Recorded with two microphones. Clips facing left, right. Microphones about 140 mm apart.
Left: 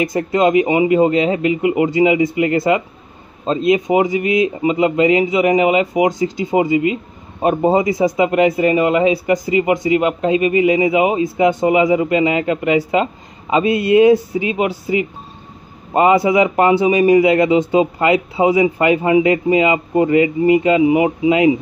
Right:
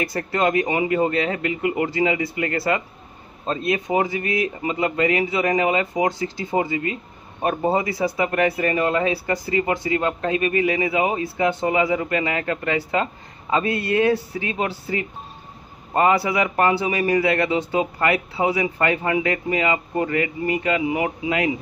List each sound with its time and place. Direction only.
0.0 s a man's voice: 20° left (ahead or behind)